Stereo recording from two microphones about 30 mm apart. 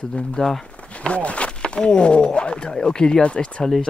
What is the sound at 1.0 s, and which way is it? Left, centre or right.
Speech, left.